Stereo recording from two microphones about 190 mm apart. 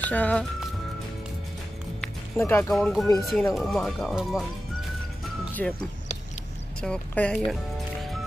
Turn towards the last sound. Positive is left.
turn(degrees=5)  # may be behind; listen again after turning